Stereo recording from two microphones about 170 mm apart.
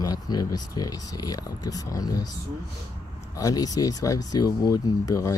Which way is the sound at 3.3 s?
20° left (ahead or behind).